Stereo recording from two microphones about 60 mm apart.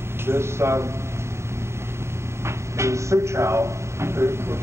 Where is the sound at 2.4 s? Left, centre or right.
Right.